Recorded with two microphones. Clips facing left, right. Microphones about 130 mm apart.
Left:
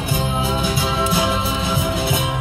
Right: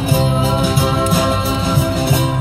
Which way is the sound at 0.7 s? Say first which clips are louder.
Right 4 dB; 45° right (ahead or behind).